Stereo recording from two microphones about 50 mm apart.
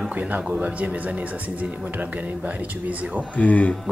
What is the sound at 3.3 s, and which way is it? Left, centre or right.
Speech, left.